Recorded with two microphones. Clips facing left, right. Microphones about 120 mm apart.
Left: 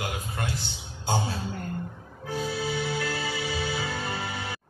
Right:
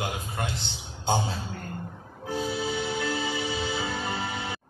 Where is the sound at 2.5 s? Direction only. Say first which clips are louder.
Left 2 dB; 20° right (ahead or behind).